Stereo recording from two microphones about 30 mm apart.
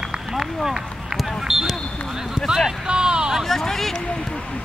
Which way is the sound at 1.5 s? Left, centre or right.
Centre.